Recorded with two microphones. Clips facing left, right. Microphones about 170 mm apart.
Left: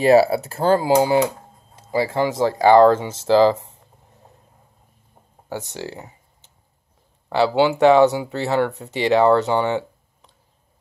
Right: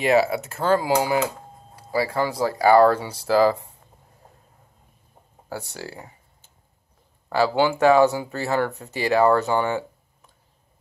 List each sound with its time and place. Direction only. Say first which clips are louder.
0.0 s speech: left 5 dB; 35° left (ahead or behind)
5.5 s speech: left 4 dB; 20° left (ahead or behind)